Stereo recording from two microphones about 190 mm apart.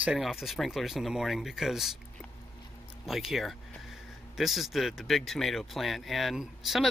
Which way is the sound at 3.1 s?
Centre (ahead or behind).